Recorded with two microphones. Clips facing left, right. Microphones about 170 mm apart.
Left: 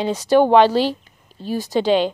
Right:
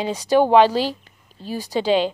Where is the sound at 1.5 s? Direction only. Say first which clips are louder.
Left 4 dB; 10° right (ahead or behind).